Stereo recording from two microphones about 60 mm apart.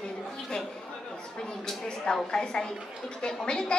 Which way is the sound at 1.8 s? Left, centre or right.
Centre.